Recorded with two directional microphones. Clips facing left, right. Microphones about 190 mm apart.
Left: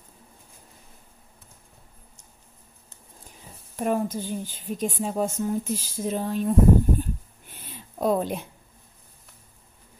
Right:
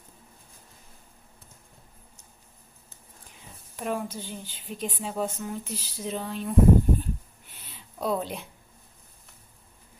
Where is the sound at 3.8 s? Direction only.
45° left (ahead or behind).